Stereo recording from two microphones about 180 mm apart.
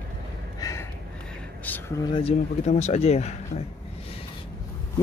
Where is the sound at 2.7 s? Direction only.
40° left (ahead or behind).